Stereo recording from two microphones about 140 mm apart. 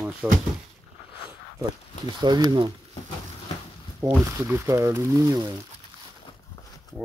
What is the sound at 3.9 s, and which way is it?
Speech, 20° right (ahead or behind).